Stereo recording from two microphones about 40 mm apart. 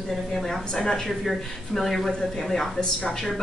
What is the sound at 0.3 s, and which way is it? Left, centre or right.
Speech, centre.